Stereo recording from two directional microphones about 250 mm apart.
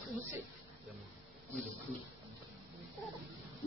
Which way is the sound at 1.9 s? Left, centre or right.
Left.